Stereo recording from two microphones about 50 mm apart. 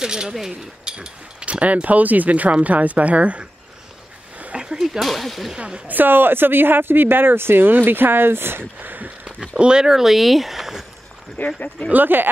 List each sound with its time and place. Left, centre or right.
0.0 s speech: centre
4.4 s a sound: right
5.0 s speech: centre
5.8 s speech: right
8.7 s a sound: right
9.6 s speech: centre
11.3 s speech: left
11.9 s speech: right